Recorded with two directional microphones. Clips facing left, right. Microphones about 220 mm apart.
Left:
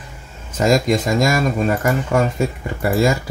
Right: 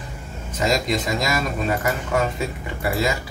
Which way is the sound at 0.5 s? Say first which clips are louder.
Left 6 dB; 45° left (ahead or behind).